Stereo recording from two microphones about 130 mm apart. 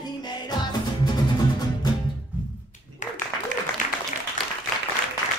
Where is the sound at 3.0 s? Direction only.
70° left (ahead or behind).